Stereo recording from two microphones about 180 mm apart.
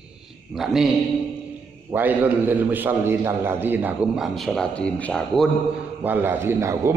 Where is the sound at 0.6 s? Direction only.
Centre (ahead or behind).